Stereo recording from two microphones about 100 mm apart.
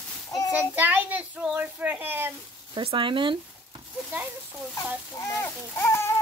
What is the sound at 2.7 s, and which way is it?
Speech, 55° right (ahead or behind).